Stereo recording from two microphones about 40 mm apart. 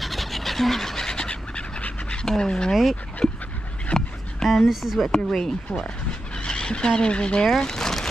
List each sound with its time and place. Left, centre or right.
0.0 s fowl: centre; by 2.1 s left
2.2 s speech: left
2.7 s speech: centre
3.2 s dog: centre
3.9 s dog: left
4.6 s speech: centre
5.1 s speech: centre
7.4 s speech: centre